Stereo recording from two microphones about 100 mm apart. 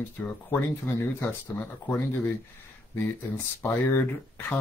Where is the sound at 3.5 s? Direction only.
30° left (ahead or behind).